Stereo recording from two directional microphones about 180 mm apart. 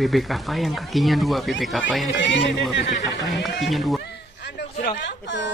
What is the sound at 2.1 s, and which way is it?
Speech, 90° left.